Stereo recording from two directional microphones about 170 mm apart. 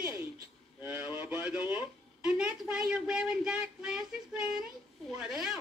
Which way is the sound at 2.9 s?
5° right (ahead or behind).